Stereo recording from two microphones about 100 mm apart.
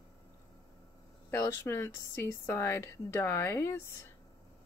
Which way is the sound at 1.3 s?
25° left (ahead or behind).